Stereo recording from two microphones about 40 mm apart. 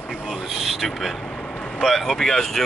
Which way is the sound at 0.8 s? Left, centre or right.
Centre.